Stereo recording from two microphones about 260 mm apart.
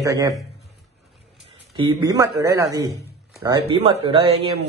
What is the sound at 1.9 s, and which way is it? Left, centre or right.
A man's voice, centre.